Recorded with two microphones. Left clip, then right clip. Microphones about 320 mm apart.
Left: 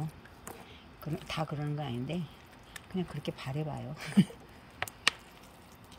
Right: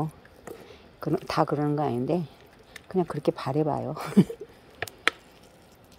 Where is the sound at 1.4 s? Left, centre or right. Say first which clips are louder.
Right 12 dB; centre.